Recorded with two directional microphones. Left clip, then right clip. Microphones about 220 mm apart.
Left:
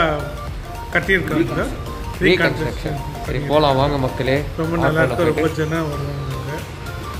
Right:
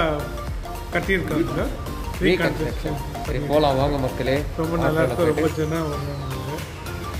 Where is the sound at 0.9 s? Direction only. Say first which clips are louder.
Left 5 dB; 15° right (ahead or behind).